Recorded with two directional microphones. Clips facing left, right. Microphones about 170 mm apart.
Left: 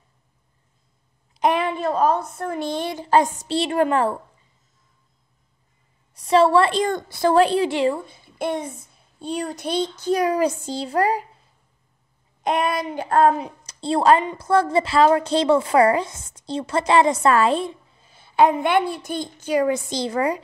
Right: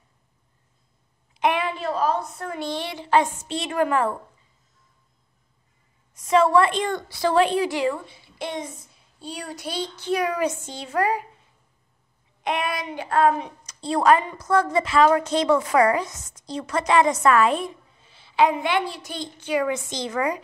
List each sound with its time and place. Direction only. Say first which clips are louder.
1.3 s a sound: left 3 dB; 40° left (ahead or behind)
1.8 s a child's voice: left 4 dB; 50° left (ahead or behind); by 4.1 s 30° left (ahead or behind)
6.1 s a woman's voice: left 2 dB; 35° left (ahead or behind); by 7.4 s 50° left (ahead or behind)
7.4 s a woman's voice: left 3 dB; 30° left (ahead or behind)
8.1 s a child's voice: left 6 dB; 50° left (ahead or behind); by 11.2 s 35° left (ahead or behind)
12.4 s a child's voice: left 4 dB; 45° left (ahead or behind)
13.4 s a woman's voice: left 3 dB; 30° left (ahead or behind)
18.1 s a child's voice: left 3 dB; 50° left (ahead or behind); by 20.3 s 30° left (ahead or behind)